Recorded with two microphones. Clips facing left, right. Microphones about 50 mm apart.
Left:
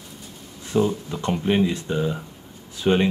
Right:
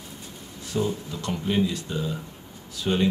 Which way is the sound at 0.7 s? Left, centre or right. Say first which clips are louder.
Left 6 dB; left.